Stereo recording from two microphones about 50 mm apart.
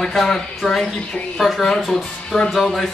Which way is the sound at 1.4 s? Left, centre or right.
Centre.